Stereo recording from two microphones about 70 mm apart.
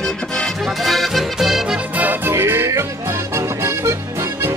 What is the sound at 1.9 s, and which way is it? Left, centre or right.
Music, right.